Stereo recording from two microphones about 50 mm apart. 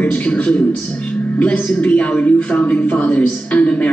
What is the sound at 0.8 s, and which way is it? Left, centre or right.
Speech, left.